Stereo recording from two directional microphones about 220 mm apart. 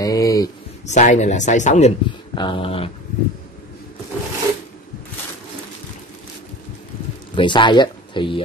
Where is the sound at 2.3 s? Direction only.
20° left (ahead or behind).